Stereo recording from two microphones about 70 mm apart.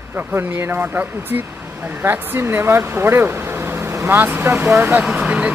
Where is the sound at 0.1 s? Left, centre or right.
Right.